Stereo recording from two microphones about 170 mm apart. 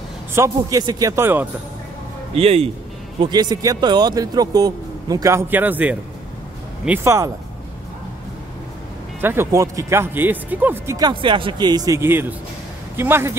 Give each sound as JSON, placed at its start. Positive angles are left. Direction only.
{"t": 0.3, "sound": "speech", "side_deg": -20}
{"t": 2.3, "sound": "speech", "side_deg": -35}
{"t": 3.2, "sound": "speech", "side_deg": -25}
{"t": 9.2, "sound": "speech", "side_deg": -15}